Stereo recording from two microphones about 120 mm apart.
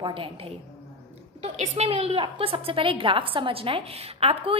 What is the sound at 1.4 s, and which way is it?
A woman's voice, 60° right (ahead or behind).